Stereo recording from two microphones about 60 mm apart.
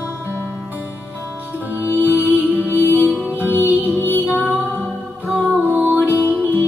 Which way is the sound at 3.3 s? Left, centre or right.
Right.